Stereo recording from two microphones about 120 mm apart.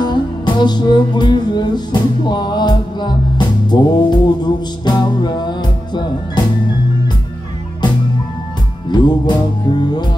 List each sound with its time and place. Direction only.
0.0 s music: 40° left (ahead or behind)
8.9 s music: 35° left (ahead or behind)